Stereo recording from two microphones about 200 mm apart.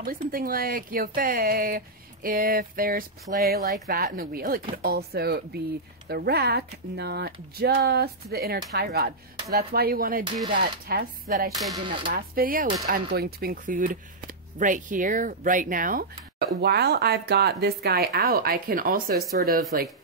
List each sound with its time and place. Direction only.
0.0 s speech: 45° right (ahead or behind)
11.7 s speech: 25° right (ahead or behind)
12.1 s speech: 45° right (ahead or behind)
16.6 s speech: 55° right (ahead or behind)